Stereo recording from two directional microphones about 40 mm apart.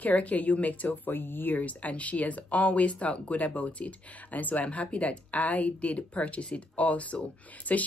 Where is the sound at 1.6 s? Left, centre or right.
Left.